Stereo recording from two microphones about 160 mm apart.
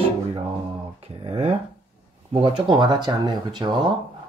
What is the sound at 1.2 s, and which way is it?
Speech, 40° right (ahead or behind).